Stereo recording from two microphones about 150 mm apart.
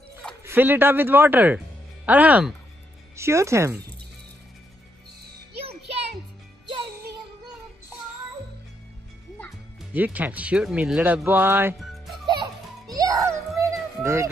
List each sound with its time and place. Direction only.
0.5 s speech: 15° right (ahead or behind)
9.9 s speech: 10° right (ahead or behind)
11.8 s music: centre (ahead or behind)
12.9 s music: 20° right (ahead or behind)